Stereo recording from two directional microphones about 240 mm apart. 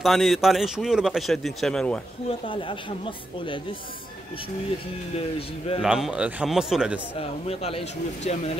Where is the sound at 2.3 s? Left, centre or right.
Left.